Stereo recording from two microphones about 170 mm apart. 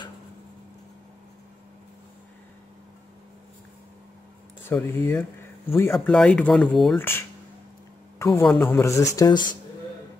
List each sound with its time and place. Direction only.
4.6 s speech: 15° left (ahead or behind)
5.9 s speech: centre (ahead or behind)
7.0 s a man's voice: 15° left (ahead or behind)